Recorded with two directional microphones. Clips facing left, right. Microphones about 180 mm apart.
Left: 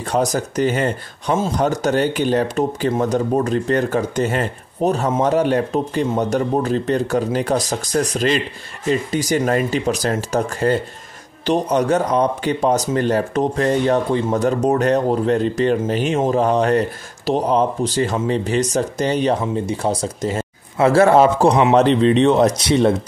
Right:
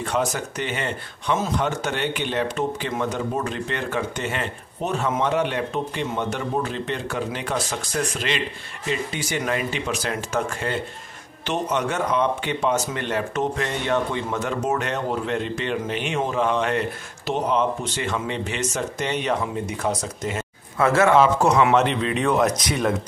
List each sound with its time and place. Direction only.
0.0 s speech: 40° left (ahead or behind)